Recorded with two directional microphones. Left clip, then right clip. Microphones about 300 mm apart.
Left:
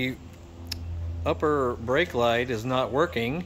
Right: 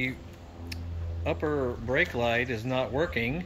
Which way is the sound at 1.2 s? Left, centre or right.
Centre.